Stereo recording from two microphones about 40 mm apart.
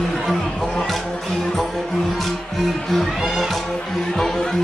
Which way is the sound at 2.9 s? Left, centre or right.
Centre.